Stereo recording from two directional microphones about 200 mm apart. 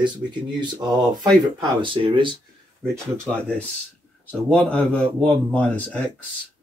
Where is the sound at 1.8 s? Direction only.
25° right (ahead or behind).